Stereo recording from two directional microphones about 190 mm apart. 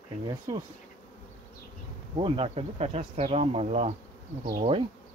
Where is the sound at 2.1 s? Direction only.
30° right (ahead or behind).